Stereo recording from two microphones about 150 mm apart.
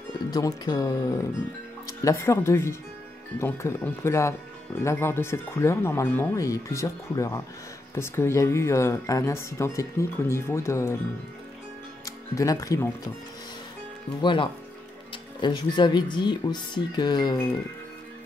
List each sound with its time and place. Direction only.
0.3 s speech: 25° left (ahead or behind)
12.0 s speech: 20° left (ahead or behind)
14.2 s speech: 35° left (ahead or behind)